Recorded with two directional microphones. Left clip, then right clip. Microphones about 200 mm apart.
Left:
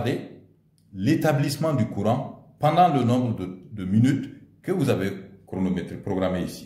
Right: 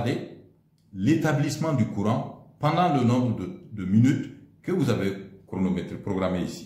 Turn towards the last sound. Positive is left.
turn(degrees=15)  # may be behind; listen again after turning